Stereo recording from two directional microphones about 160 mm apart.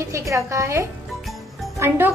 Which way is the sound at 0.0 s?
20° right (ahead or behind).